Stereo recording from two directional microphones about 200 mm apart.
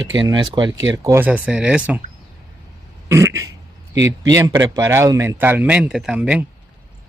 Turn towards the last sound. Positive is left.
turn(degrees=-5)  # may be behind; listen again after turning